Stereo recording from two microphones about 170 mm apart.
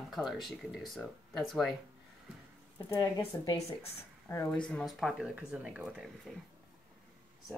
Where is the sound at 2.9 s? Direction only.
15° left (ahead or behind).